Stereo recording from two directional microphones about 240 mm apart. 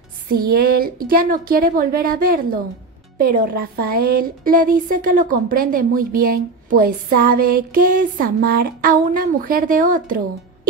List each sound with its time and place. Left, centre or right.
0.3 s a woman's voice: right